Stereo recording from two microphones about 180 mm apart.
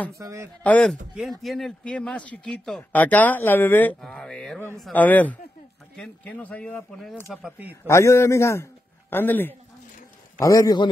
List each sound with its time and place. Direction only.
0.1 s speech: 15° right (ahead or behind)
0.7 s speech: 5° left (ahead or behind)
7.4 s speech: 10° right (ahead or behind)
7.8 s a man's voice: 15° left (ahead or behind)